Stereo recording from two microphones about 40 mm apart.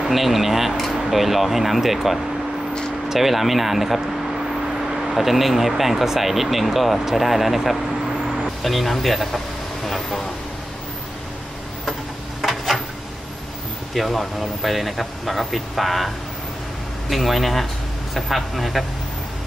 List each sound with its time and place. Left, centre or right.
0.0 s speech: centre
12.4 s a sound: centre
13.9 s speech: centre
17.1 s speech: centre